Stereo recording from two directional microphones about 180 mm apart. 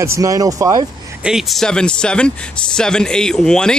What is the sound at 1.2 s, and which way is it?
Speech, centre (ahead or behind).